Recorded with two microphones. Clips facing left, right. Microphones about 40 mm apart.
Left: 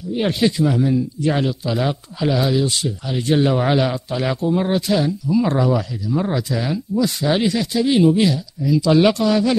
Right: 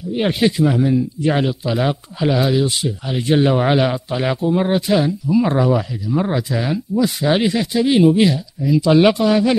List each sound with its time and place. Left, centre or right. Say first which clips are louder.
0.1 s speech: right 1 dB; centre